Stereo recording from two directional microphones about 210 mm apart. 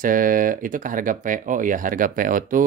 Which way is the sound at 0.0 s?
40° right (ahead or behind).